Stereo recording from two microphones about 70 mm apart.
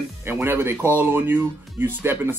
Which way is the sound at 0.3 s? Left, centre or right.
Right.